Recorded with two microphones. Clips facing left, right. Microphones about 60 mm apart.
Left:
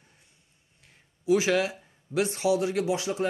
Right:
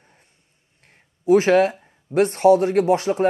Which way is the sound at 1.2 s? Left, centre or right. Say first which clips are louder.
Right 9 dB; right.